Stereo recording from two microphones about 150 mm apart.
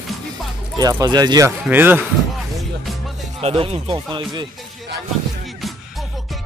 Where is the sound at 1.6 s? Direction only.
10° right (ahead or behind).